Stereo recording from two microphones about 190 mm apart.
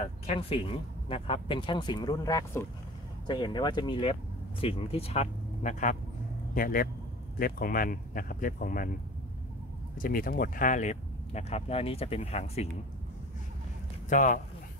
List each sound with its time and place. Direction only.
0.0 s speech: 30° left (ahead or behind); by 8.9 s 50° left (ahead or behind)
9.9 s speech: 45° left (ahead or behind)
14.0 s speech: 45° left (ahead or behind)